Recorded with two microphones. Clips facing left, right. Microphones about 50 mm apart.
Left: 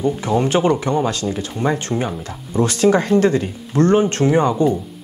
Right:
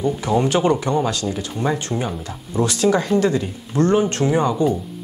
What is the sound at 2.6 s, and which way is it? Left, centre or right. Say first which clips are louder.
Speech: left 3 dB; left.